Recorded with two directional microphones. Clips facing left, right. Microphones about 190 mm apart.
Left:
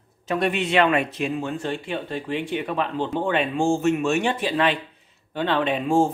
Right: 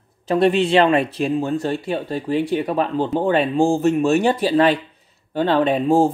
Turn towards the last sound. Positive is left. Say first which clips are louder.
# right 4 dB
turn(degrees=-35)  # may be behind; listen again after turning